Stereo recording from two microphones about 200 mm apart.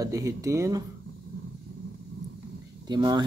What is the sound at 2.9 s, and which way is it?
Speech, 20° right (ahead or behind).